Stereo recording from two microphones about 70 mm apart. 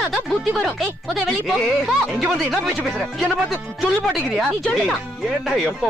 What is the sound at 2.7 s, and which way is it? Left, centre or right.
Speech, centre.